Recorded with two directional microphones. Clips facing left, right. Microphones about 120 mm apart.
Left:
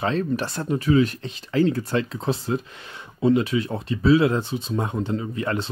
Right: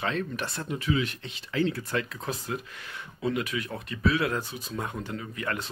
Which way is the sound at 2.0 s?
30° left (ahead or behind).